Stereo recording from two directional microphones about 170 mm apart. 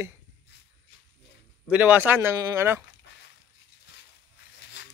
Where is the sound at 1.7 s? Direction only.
10° right (ahead or behind).